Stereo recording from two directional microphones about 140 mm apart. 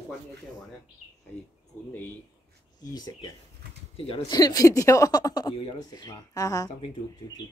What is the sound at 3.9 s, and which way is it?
Speech, 40° left (ahead or behind).